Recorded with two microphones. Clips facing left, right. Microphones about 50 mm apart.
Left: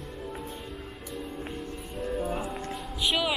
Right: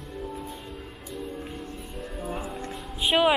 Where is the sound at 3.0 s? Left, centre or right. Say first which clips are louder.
Right 6 dB; right.